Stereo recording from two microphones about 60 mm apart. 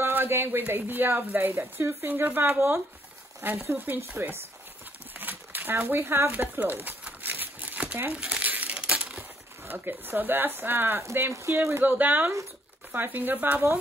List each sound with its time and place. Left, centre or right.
0.0 s a woman's voice: right
2.0 s a woman's voice: right
5.2 s crumpling: right
8.7 s crushing: centre
9.7 s a woman's voice: right
11.5 s speech: right
11.8 s a woman's voice: right